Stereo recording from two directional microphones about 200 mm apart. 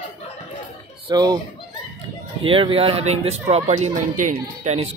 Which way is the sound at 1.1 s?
20° right (ahead or behind).